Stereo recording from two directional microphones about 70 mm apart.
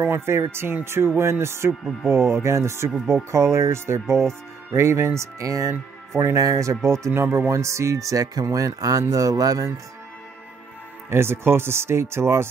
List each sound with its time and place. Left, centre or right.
0.0 s speech: right
1.7 s speech: centre
2.0 s speech: right
11.1 s speech: right